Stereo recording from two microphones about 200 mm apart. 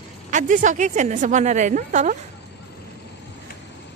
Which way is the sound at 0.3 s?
40° right (ahead or behind).